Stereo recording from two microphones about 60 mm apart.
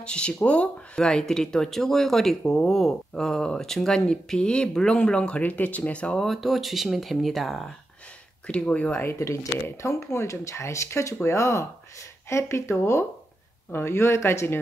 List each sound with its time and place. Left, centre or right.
0.0 s speech: centre
6.1 s speech: centre
8.5 s speech: left
9.2 s speech: left